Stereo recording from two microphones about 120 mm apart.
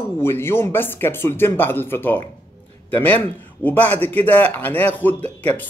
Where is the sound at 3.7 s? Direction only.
15° left (ahead or behind).